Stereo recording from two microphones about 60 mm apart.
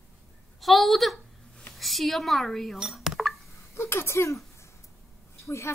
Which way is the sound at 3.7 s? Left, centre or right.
Left.